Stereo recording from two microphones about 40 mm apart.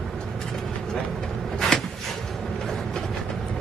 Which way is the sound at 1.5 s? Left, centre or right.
Centre.